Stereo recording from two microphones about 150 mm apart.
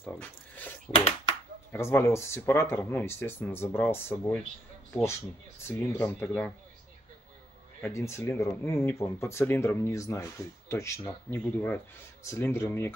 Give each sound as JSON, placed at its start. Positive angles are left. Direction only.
{"t": 0.0, "sound": "a sound", "side_deg": 10}
{"t": 0.9, "sound": "speech", "side_deg": 15}
{"t": 5.7, "sound": "speech", "side_deg": 15}
{"t": 7.8, "sound": "speech", "side_deg": 20}